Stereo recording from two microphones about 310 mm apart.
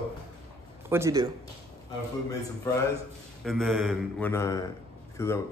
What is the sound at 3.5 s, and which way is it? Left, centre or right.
A man's voice, centre.